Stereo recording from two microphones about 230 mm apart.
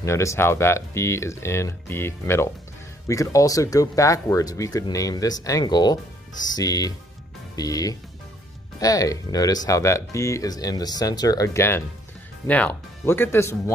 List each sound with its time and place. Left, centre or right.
0.0 s speech: centre